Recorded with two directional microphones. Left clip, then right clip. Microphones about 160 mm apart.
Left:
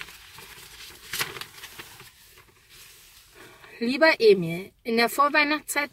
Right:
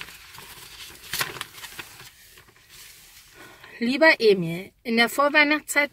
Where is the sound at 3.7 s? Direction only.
25° right (ahead or behind).